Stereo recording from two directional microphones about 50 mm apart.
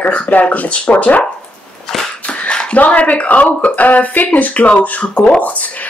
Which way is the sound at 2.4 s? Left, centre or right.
Left.